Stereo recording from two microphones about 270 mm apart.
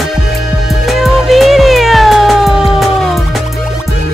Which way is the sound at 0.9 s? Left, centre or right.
Centre.